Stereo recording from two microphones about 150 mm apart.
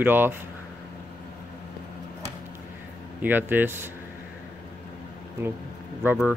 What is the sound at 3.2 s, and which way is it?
Speech, 15° right (ahead or behind).